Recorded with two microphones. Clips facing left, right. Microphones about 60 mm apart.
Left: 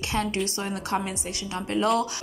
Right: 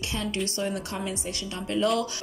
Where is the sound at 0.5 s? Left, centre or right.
Left.